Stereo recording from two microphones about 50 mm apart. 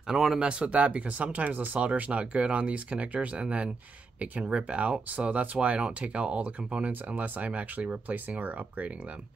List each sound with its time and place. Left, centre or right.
0.4 s speech: right
1.9 s speech: right